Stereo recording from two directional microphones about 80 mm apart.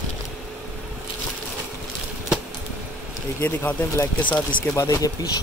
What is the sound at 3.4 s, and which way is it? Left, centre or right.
Speech, left.